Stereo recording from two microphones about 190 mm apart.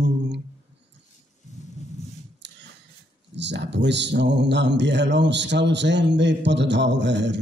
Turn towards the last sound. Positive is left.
turn(degrees=-65)  # may be behind; listen again after turning